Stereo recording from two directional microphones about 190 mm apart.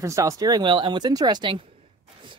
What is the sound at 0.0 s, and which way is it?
Speech, 15° right (ahead or behind).